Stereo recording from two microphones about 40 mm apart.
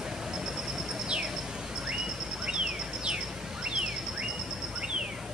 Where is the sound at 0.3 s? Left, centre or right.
Centre.